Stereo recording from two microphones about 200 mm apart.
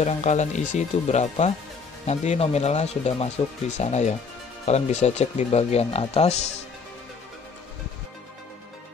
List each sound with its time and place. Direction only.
0.0 s speech: 35° left (ahead or behind)